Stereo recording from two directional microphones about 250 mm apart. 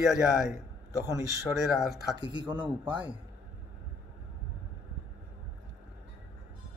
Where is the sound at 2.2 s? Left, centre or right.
Centre.